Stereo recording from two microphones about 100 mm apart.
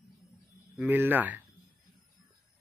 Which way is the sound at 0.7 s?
20° right (ahead or behind).